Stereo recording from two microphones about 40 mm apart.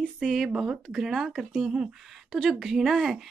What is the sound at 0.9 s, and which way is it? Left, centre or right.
Speech, centre.